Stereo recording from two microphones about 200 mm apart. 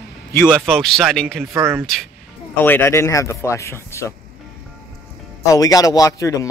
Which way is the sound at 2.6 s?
10° left (ahead or behind).